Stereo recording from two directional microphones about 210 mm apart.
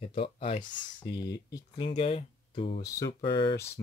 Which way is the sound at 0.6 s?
60° left (ahead or behind).